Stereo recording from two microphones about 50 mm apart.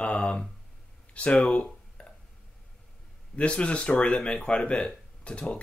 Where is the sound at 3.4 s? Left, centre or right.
Left.